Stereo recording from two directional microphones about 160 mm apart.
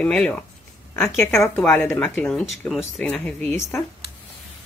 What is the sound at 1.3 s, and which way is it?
Speech, centre (ahead or behind).